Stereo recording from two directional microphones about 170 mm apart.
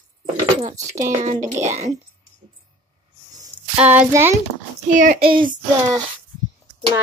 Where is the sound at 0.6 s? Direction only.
45° right (ahead or behind).